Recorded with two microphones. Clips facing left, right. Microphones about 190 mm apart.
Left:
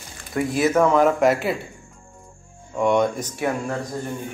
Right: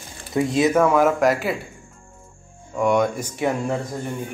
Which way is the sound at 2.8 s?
Centre (ahead or behind).